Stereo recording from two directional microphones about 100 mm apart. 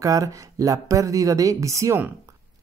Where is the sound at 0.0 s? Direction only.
35° right (ahead or behind).